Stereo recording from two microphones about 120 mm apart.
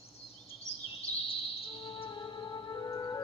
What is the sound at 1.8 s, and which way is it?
Music, 45° left (ahead or behind).